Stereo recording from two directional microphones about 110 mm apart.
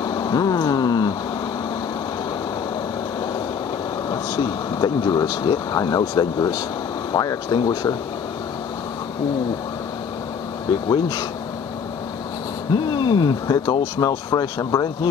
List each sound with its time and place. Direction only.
0.0 s a sound: 35° left (ahead or behind)
4.1 s speech: 40° left (ahead or behind)
10.9 s speech: 40° left (ahead or behind)
12.7 s speech: 45° left (ahead or behind)